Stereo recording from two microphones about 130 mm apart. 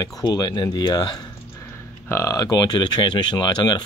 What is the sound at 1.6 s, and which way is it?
Speech, 20° left (ahead or behind).